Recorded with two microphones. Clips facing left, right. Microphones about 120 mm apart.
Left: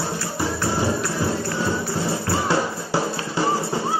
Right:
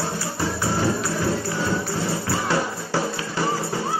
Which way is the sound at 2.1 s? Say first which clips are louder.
Left 3 dB; 25° left (ahead or behind).